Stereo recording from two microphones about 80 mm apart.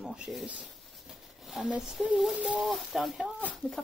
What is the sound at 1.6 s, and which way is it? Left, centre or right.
Speech, centre.